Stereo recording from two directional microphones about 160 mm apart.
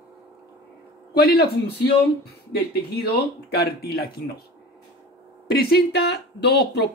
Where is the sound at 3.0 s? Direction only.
75° left (ahead or behind).